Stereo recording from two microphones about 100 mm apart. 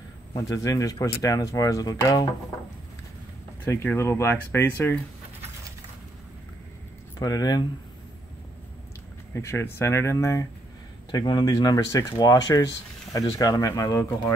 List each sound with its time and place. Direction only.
0.4 s speech: 35° left (ahead or behind)
3.6 s speech: 25° left (ahead or behind)
7.2 s speech: 40° left (ahead or behind)
9.3 s speech: 25° left (ahead or behind)
11.1 s speech: 45° left (ahead or behind)